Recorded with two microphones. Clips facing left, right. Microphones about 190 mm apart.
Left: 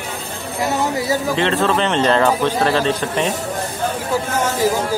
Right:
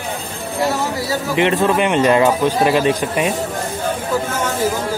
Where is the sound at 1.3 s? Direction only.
15° right (ahead or behind).